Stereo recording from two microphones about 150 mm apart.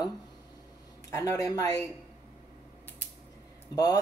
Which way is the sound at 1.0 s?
20° left (ahead or behind).